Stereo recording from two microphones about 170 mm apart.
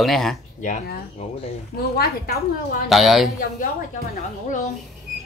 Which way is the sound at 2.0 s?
65° left (ahead or behind).